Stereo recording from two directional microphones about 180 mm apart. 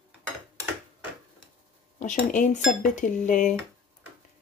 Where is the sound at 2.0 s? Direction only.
45° left (ahead or behind).